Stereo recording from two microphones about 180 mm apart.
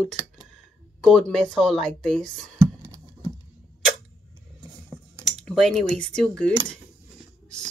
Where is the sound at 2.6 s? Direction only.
20° right (ahead or behind).